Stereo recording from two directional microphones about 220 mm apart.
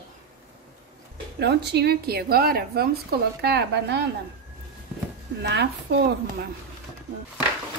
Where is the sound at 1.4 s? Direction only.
50° right (ahead or behind).